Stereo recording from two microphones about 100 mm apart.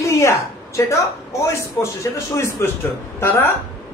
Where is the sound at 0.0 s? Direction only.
30° left (ahead or behind).